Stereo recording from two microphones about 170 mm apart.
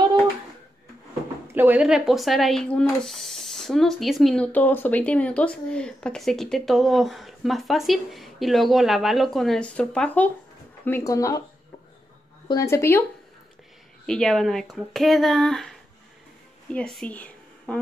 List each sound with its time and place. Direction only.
1.5 s speech: 10° right (ahead or behind); by 10.3 s 10° left (ahead or behind)
10.9 s speech: 20° left (ahead or behind)
12.4 s speech: 20° left (ahead or behind)
14.0 s speech: 5° left (ahead or behind)
16.6 s a sound: 5° left (ahead or behind)